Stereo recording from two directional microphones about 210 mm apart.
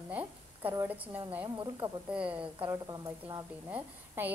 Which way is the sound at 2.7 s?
15° right (ahead or behind).